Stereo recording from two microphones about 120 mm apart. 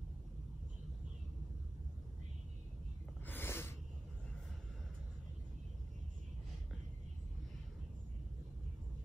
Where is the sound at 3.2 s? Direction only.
20° left (ahead or behind).